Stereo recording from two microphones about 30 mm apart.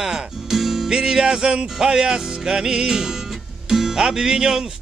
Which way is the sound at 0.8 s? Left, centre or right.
Right.